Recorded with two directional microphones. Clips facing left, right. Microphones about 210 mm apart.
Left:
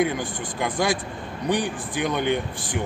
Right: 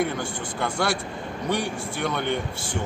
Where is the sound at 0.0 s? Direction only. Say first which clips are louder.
Left 2 dB; 15° left (ahead or behind).